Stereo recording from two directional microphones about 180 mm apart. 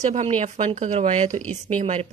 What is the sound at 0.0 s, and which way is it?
Speech, 40° right (ahead or behind).